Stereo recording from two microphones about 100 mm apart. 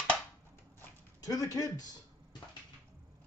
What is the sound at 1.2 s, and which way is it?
Speech, 35° left (ahead or behind).